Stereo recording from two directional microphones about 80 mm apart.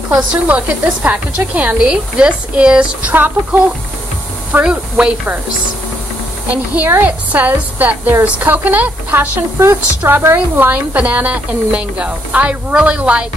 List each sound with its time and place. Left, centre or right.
0.1 s a woman's voice: centre
4.6 s a woman's voice: centre
6.5 s a woman's voice: centre